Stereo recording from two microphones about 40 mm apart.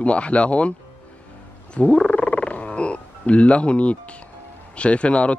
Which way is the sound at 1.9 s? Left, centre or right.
Left.